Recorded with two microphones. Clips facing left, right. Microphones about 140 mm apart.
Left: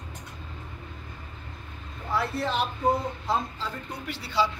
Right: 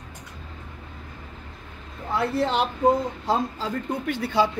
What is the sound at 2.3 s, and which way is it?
Speech, 25° right (ahead or behind).